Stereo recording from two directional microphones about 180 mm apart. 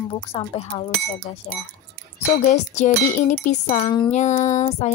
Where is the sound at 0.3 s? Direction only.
35° left (ahead or behind).